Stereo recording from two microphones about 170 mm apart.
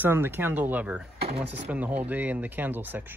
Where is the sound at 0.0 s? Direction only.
10° right (ahead or behind).